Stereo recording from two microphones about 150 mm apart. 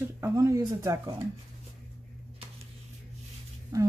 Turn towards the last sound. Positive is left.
turn(degrees=-25)  # may be behind; listen again after turning